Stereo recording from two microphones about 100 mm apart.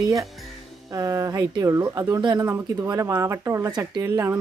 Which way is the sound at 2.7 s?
45° right (ahead or behind).